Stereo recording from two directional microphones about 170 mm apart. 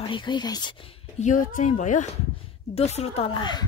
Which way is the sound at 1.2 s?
45° left (ahead or behind).